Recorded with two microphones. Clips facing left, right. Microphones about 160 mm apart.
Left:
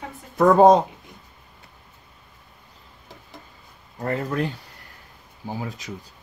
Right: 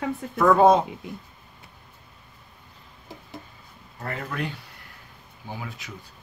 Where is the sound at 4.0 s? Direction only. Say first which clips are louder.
Left 6 dB; 35° left (ahead or behind).